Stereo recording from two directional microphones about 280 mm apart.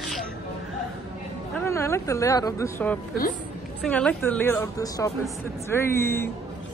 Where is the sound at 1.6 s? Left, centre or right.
Centre.